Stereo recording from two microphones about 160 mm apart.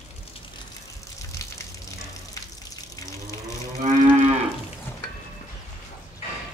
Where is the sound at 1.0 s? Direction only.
20° left (ahead or behind).